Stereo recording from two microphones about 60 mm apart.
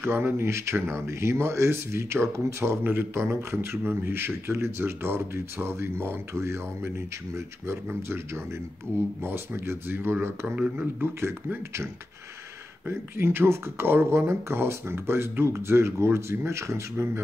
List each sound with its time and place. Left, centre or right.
0.0 s speech: right
0.5 s speech: right
2.8 s speech: right
10.5 s speech: right
11.0 s speech: right
16.9 s speech: right